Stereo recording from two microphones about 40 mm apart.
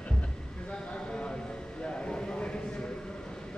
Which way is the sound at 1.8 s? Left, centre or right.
Left.